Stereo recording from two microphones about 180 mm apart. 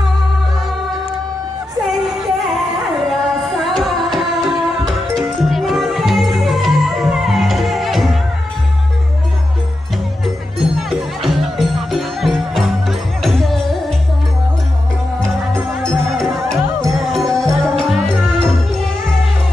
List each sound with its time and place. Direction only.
3.1 s music: centre (ahead or behind)
10.8 s music: centre (ahead or behind)
15.8 s music: 5° left (ahead or behind)